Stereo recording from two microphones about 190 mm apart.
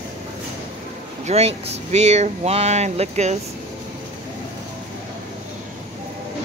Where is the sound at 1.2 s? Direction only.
35° right (ahead or behind).